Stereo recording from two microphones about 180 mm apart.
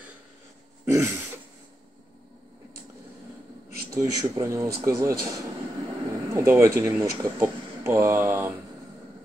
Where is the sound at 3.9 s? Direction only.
15° right (ahead or behind).